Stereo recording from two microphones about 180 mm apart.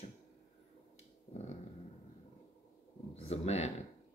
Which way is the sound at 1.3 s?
40° left (ahead or behind).